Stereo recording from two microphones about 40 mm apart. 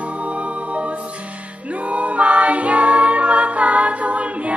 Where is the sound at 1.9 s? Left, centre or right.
Right.